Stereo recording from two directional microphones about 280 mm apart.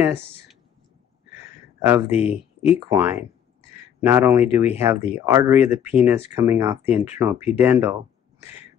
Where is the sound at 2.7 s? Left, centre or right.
Centre.